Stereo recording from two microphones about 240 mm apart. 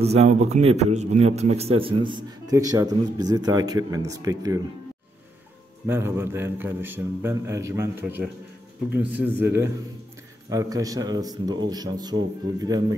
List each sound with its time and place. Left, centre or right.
0.0 s a man's voice: right
5.9 s a man's voice: centre
8.9 s a man's voice: centre